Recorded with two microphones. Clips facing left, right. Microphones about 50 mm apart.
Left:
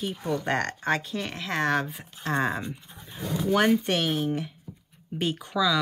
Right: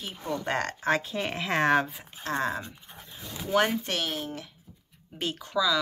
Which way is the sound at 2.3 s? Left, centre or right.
Centre.